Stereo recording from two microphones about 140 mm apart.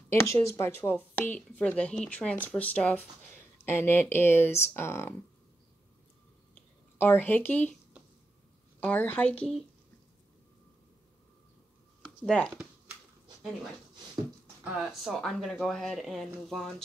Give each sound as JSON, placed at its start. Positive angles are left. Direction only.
{"t": 0.1, "sound": "speech", "side_deg": 20}
{"t": 6.5, "sound": "a sound", "side_deg": 15}
{"t": 8.7, "sound": "speech", "side_deg": 10}
{"t": 12.3, "sound": "speech", "side_deg": 5}
{"t": 14.6, "sound": "speech", "side_deg": -5}